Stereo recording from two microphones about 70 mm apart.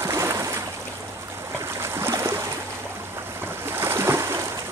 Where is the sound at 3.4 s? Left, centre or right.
Right.